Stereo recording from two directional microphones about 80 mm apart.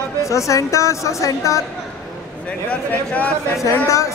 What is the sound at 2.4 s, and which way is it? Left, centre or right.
Speech, centre.